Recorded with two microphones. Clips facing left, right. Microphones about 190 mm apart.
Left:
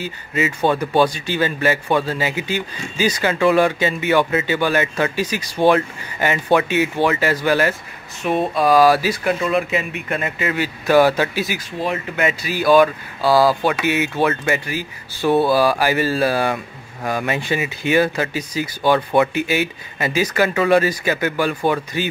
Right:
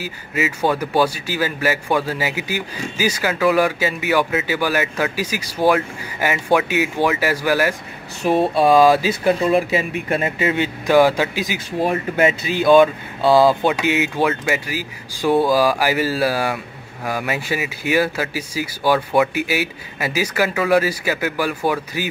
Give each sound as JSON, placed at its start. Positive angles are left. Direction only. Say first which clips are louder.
{"t": 0.0, "sound": "a man's voice", "louder": "left 1 dB", "side_deg": -10}
{"t": 8.2, "sound": "speech", "louder": "right 3 dB", "side_deg": -35}
{"t": 8.5, "sound": "speech", "louder": "even", "side_deg": -25}
{"t": 9.2, "sound": "a man's voice", "louder": "right 3 dB", "side_deg": -30}